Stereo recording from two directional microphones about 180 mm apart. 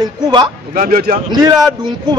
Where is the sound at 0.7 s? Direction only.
55° right (ahead or behind).